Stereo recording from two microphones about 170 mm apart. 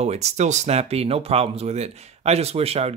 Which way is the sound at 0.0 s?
40° right (ahead or behind).